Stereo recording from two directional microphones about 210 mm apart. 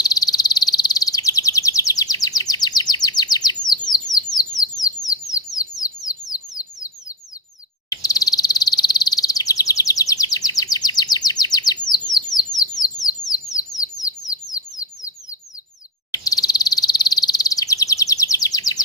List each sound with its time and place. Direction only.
0.0 s bird: 20° left (ahead or behind)
5.8 s bird: 15° left (ahead or behind)
7.9 s a sound: 15° left (ahead or behind)
13.9 s bird: 15° left (ahead or behind)